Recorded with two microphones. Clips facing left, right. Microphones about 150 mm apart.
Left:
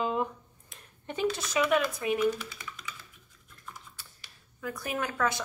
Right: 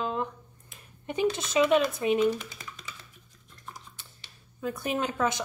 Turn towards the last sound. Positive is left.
turn(degrees=-20)  # may be behind; listen again after turning